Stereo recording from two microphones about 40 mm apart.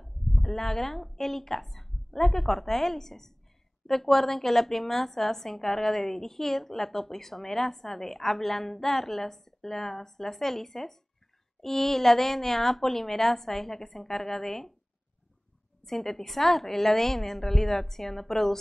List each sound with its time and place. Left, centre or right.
0.0 s a woman's voice: centre
15.8 s a woman's voice: centre